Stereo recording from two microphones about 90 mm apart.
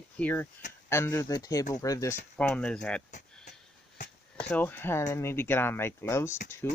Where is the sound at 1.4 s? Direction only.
40° left (ahead or behind).